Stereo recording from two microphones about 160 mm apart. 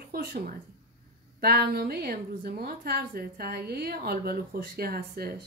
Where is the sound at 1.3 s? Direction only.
70° right (ahead or behind).